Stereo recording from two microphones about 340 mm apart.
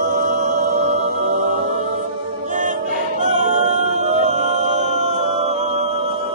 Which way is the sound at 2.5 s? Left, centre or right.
Right.